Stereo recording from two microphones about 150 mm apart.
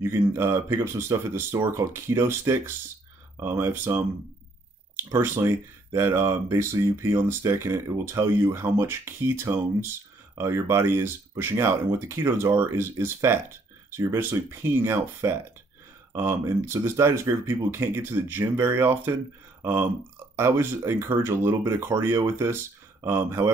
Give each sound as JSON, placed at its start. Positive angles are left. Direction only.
{"t": 0.0, "sound": "speech", "side_deg": -15}